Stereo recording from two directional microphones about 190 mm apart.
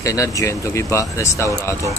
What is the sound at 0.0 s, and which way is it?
Speech, 15° left (ahead or behind).